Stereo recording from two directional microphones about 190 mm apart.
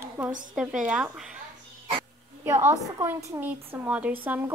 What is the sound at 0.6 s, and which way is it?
Speech, 5° right (ahead or behind).